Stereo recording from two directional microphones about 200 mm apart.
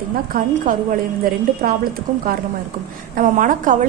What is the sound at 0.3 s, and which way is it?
Speech, 45° right (ahead or behind).